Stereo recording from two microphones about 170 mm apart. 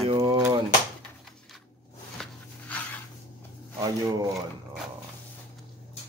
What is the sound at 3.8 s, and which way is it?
Speech, 20° right (ahead or behind).